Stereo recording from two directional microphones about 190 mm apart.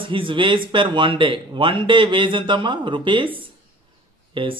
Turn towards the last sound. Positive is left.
turn(degrees=-25)  # may be behind; listen again after turning